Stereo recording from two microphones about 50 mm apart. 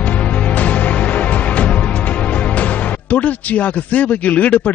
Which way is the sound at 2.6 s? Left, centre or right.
Left.